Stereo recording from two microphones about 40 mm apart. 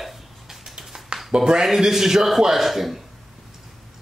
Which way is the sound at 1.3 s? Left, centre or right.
Centre.